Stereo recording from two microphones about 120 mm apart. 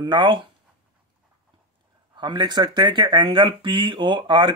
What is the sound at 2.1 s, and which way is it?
Speech, 40° right (ahead or behind).